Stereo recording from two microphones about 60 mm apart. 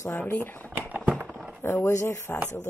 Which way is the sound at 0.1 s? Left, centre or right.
Left.